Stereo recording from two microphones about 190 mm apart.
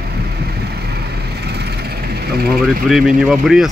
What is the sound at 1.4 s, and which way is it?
Vehicle, 60° right (ahead or behind).